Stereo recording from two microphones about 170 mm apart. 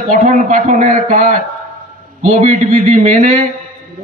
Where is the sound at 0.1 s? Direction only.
50° right (ahead or behind).